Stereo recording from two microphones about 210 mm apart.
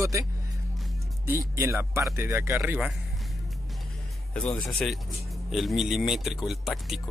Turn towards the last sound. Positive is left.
turn(degrees=0)  # may be behind; listen again after turning